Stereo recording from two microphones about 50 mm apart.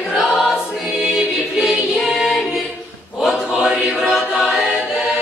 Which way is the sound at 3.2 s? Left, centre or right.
Centre.